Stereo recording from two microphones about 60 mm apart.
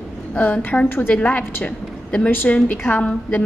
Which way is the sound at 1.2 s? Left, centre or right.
Left.